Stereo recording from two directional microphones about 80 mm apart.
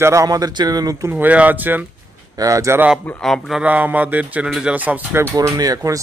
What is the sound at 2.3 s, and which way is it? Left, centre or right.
Speech, right.